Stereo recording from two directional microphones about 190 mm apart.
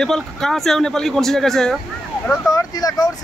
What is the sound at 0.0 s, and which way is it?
Speech, centre (ahead or behind).